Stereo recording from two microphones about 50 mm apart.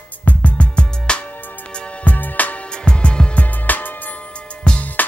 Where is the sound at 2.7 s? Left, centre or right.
Centre.